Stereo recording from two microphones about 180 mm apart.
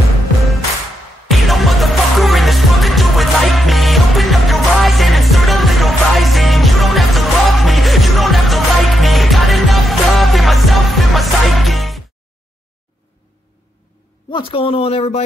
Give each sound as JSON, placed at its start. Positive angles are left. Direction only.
{"t": 1.3, "sound": "music", "side_deg": 0}
{"t": 14.3, "sound": "speech", "side_deg": 30}